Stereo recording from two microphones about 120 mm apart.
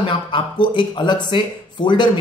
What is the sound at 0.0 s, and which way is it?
Speech, 45° left (ahead or behind).